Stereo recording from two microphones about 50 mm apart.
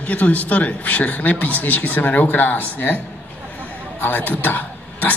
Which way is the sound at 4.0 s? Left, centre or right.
Left.